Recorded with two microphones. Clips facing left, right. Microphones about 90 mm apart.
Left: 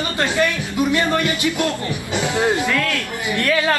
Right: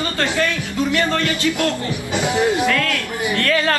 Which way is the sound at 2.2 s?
20° right (ahead or behind).